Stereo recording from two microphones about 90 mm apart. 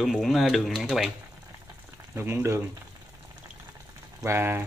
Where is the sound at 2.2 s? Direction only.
30° right (ahead or behind).